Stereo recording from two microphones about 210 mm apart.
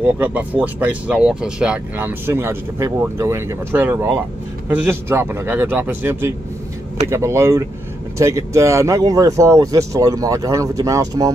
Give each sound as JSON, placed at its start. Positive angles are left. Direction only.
{"t": 0.0, "sound": "speech", "side_deg": -10}